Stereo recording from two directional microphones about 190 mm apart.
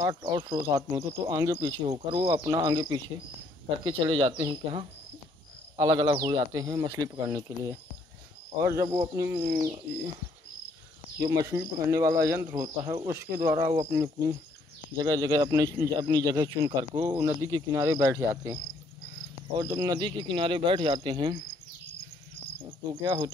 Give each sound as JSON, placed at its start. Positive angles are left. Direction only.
{"t": 0.3, "sound": "speech", "side_deg": -20}
{"t": 11.1, "sound": "speech", "side_deg": -15}
{"t": 19.6, "sound": "speech", "side_deg": -20}